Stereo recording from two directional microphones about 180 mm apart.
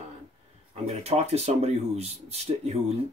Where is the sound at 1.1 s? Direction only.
35° right (ahead or behind).